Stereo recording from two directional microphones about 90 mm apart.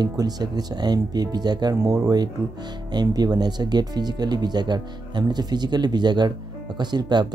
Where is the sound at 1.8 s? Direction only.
40° right (ahead or behind).